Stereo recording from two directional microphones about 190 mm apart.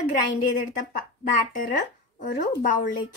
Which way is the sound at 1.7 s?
40° left (ahead or behind).